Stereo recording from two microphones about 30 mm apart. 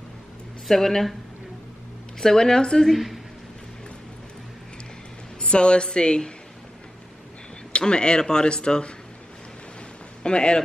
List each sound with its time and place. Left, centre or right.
0.7 s speech: centre
2.1 s speech: centre
5.4 s a woman's voice: left
7.7 s speech: left
10.2 s a woman's voice: left